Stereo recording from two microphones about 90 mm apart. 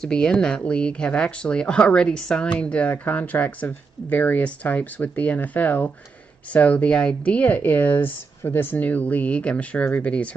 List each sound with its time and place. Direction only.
0.0 s speech: 10° left (ahead or behind)